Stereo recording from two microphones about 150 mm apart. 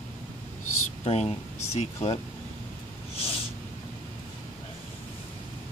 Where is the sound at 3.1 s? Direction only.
40° left (ahead or behind).